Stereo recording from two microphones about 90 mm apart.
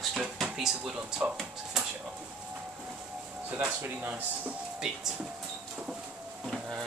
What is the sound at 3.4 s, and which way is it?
Speech, 20° right (ahead or behind).